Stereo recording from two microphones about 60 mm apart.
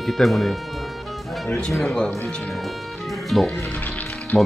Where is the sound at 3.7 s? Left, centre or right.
Left.